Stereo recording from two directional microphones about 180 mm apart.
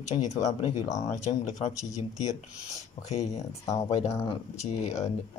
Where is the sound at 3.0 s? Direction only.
40° left (ahead or behind).